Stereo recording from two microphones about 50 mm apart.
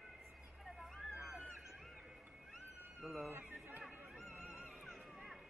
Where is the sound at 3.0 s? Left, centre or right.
Centre.